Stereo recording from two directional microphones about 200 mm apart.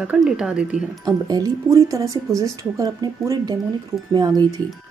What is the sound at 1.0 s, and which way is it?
Speech, 20° right (ahead or behind).